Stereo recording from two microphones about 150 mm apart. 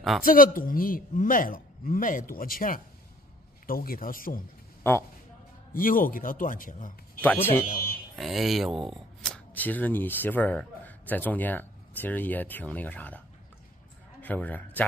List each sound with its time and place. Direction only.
0.2 s a man's voice: 70° left (ahead or behind)
4.9 s a man's voice: 15° left (ahead or behind)
5.8 s speech: 70° left (ahead or behind)
7.2 s a man's voice: 15° left (ahead or behind)
7.6 s a sound: 75° left (ahead or behind)
8.2 s speech: centre (ahead or behind)
14.2 s a man's voice: 10° left (ahead or behind)